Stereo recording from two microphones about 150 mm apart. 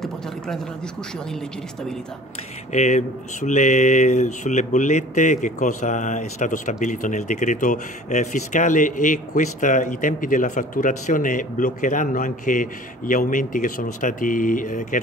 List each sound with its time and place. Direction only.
2.7 s speech: 50° left (ahead or behind)